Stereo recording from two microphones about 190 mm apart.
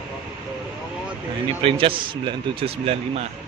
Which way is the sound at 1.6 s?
30° right (ahead or behind).